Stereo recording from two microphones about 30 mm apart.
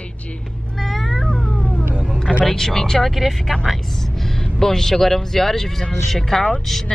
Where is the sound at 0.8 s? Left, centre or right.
Centre.